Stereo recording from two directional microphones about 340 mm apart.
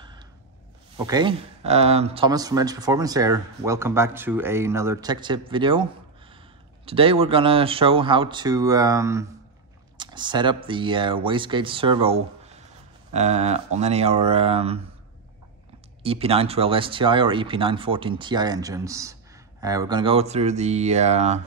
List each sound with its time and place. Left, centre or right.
0.9 s speech: centre
6.9 s speech: centre
16.0 s speech: centre